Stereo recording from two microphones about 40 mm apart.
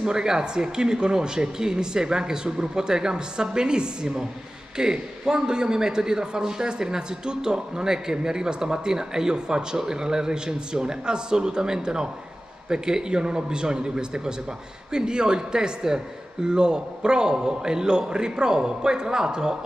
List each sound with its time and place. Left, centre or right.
0.0 s a man's voice: centre